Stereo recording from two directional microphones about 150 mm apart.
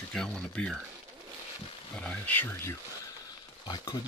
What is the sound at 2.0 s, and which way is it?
Speech, 10° left (ahead or behind).